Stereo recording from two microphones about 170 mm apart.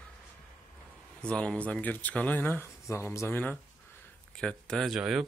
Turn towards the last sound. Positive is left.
turn(degrees=-5)  # may be behind; listen again after turning